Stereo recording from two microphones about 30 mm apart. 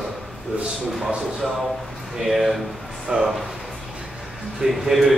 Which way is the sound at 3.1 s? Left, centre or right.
Right.